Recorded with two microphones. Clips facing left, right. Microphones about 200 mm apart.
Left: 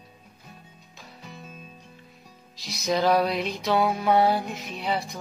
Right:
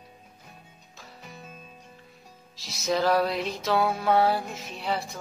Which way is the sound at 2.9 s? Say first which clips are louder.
Left 1 dB; 15° left (ahead or behind).